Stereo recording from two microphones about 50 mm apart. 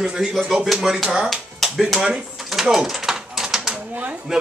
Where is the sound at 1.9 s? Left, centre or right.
Centre.